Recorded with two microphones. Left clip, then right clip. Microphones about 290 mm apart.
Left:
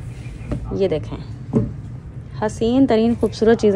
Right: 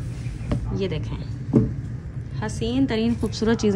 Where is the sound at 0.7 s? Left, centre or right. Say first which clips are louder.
Left 11 dB; centre.